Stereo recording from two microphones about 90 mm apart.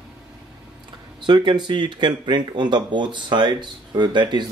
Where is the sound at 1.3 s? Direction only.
60° right (ahead or behind).